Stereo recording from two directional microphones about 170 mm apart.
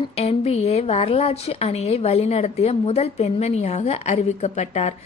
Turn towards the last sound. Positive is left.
turn(degrees=40)  # may be behind; listen again after turning